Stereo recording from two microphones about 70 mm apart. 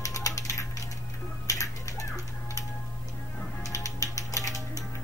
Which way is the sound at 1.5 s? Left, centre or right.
Left.